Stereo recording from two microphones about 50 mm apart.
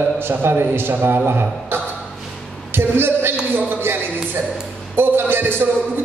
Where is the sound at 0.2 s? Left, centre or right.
Right.